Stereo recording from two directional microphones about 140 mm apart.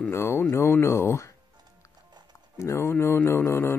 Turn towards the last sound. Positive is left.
turn(degrees=15)  # may be behind; listen again after turning